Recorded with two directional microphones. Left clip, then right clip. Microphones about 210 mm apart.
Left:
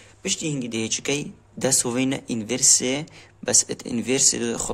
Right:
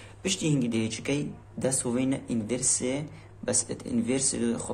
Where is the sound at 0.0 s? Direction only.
25° left (ahead or behind).